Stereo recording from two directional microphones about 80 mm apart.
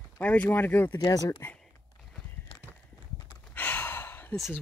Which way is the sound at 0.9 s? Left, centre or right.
Left.